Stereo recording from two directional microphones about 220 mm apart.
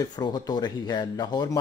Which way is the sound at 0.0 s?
20° left (ahead or behind).